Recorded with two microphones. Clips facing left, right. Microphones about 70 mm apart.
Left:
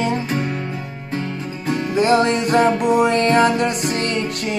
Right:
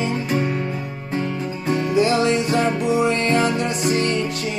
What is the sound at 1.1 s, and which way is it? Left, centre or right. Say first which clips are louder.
Music: right 1 dB; centre.